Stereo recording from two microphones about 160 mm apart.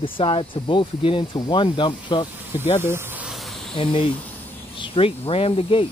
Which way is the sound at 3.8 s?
35° left (ahead or behind).